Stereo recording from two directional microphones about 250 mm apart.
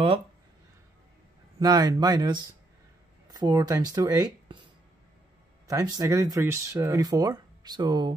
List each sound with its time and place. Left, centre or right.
1.6 s speech: centre
5.7 s speech: centre